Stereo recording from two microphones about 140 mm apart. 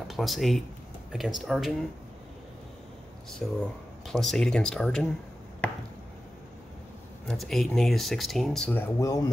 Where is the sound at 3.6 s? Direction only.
5° left (ahead or behind).